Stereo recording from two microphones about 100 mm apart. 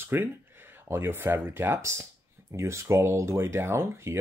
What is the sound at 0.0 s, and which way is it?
Speech, 25° right (ahead or behind).